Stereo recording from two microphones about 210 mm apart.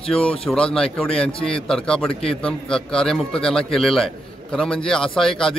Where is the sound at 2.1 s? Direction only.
25° left (ahead or behind).